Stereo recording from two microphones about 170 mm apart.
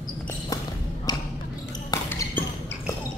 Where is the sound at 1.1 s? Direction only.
25° left (ahead or behind).